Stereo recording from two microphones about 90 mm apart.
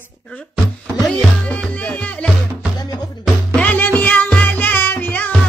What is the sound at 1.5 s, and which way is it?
Music, 15° left (ahead or behind).